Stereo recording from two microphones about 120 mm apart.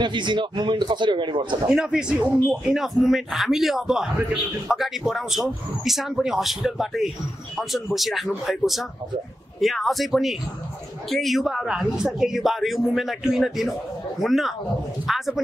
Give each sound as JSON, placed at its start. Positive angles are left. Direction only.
{"t": 0.0, "sound": "a man's voice", "side_deg": -40}
{"t": 1.7, "sound": "a woman's voice", "side_deg": -5}